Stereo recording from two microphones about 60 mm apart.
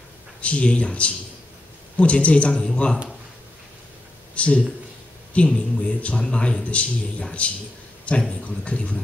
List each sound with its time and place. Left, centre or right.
0.4 s a man's voice: left
4.4 s a man's voice: centre